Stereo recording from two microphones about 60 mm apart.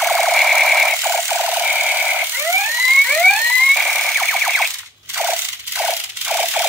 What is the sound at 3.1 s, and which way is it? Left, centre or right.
Police car, centre.